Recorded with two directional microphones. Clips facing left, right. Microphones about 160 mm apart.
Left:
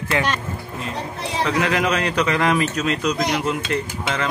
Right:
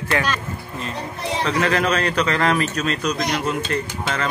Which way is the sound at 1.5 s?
15° left (ahead or behind).